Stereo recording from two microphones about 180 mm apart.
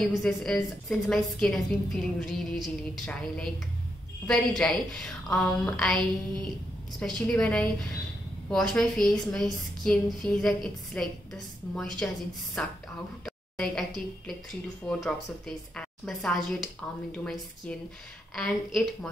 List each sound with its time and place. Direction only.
0.0 s a woman's voice: centre (ahead or behind)
7.2 s a woman's voice: 5° left (ahead or behind)